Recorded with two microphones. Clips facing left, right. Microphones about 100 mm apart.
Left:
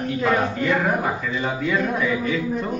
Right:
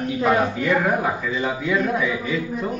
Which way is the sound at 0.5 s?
Centre (ahead or behind).